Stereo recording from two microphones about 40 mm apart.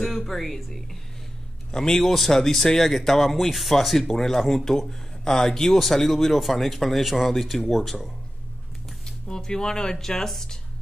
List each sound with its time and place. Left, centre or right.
0.0 s speech: centre
1.7 s speech: centre
9.0 s speech: centre